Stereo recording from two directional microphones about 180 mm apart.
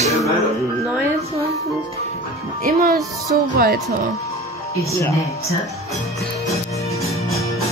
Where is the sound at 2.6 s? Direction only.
55° right (ahead or behind).